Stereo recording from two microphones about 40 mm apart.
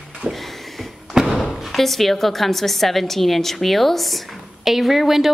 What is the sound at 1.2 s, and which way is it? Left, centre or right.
A woman's voice, centre.